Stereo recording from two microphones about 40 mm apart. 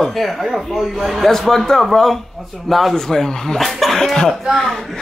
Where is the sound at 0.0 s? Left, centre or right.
Centre.